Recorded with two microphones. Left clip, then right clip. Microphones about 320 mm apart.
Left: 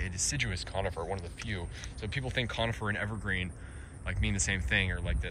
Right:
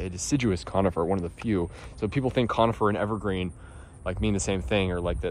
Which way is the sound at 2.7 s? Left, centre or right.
Right.